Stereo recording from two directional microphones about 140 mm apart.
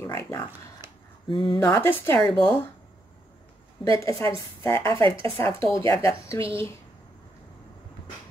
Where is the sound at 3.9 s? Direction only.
20° left (ahead or behind).